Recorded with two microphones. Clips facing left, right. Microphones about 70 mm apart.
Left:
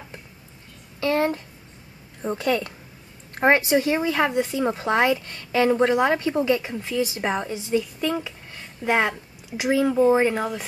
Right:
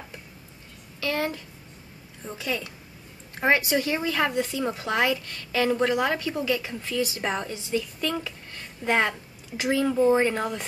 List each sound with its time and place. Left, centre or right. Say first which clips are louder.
1.0 s speech: left 6 dB; left
2.2 s a woman's voice: left 8 dB; left
3.3 s speech: left 4 dB; left; by 10.6 s centre